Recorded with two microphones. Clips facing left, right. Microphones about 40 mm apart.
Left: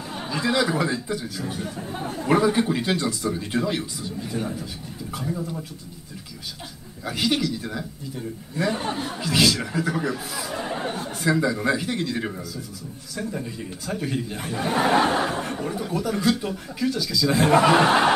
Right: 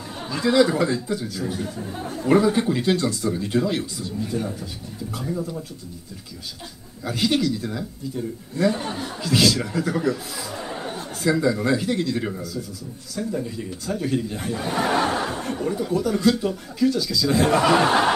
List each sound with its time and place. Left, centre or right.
0.1 s speech: centre
7.1 s speech: centre